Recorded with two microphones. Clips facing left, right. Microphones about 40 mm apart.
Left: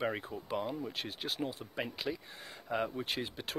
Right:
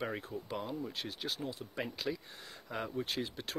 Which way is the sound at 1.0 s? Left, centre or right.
Left.